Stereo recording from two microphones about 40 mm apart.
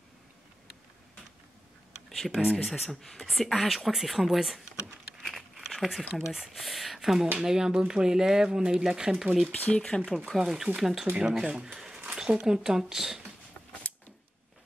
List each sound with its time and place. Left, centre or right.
2.0 s a sound: centre
2.5 s speech: centre
5.7 s speech: centre
9.7 s speech: left
10.1 s speech: centre
11.2 s speech: centre
13.9 s a sound: left